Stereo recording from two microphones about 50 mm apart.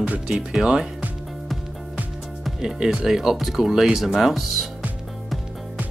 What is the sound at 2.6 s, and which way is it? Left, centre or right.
Speech, centre.